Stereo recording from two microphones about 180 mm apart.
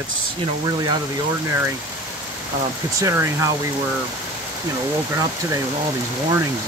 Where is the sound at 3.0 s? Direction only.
15° right (ahead or behind).